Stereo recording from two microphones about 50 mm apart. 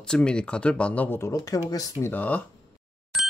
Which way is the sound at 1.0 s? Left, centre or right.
Left.